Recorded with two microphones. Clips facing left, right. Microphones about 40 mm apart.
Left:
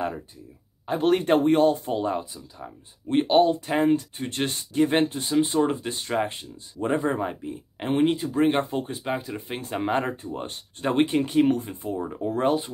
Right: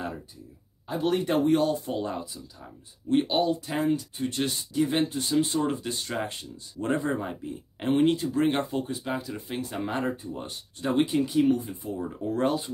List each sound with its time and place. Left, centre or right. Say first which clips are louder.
0.8 s speech: left 5 dB; left
2.0 s speech: left 4 dB; left
3.1 s speech: left 5 dB; left
8.6 s speech: left 2 dB; left